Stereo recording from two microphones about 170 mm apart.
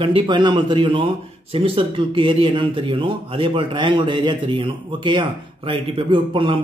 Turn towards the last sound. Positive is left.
turn(degrees=-30)  # may be behind; listen again after turning